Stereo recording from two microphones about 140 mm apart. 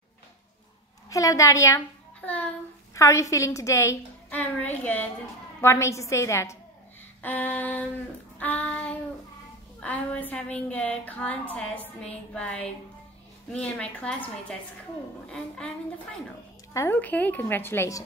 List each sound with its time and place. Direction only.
1.1 s a woman's voice: 25° left (ahead or behind)
2.2 s speech: 10° left (ahead or behind)
2.9 s a woman's voice: 20° left (ahead or behind)
16.7 s a woman's voice: 15° left (ahead or behind)